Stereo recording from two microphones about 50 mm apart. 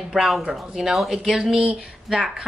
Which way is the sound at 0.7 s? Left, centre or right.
Centre.